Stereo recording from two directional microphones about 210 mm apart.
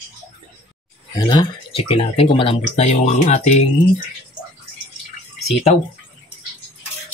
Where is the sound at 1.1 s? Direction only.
20° left (ahead or behind).